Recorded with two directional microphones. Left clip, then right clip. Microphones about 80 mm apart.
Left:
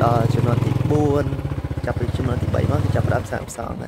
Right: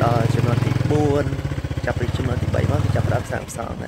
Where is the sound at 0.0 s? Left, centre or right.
Left.